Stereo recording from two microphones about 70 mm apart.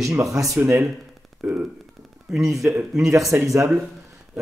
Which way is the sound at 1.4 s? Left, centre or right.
Right.